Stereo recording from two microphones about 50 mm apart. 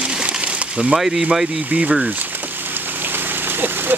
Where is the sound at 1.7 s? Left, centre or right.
Right.